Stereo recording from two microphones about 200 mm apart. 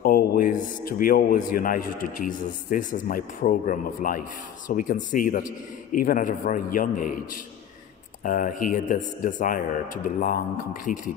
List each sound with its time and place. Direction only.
0.0 s a man's voice: 45° left (ahead or behind)